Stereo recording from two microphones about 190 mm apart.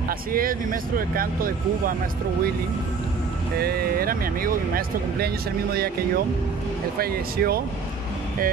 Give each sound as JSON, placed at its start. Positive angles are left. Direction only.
{"t": 0.3, "sound": "speech", "side_deg": -50}
{"t": 3.5, "sound": "speech", "side_deg": -55}